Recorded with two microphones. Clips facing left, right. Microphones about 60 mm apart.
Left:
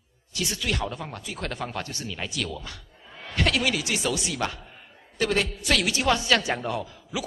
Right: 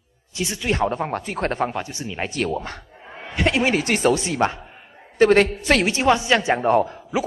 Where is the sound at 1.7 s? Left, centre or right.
Right.